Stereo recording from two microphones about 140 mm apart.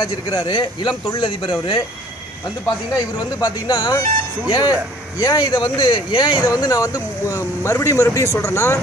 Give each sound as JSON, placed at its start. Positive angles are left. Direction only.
{"t": 0.0, "sound": "speech", "side_deg": 25}
{"t": 2.9, "sound": "speech", "side_deg": 25}